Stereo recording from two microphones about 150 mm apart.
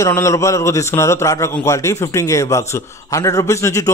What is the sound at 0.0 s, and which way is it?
A man's voice, 20° left (ahead or behind).